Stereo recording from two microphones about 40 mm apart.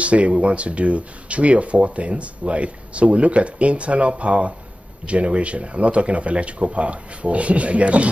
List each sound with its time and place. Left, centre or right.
0.0 s speech: right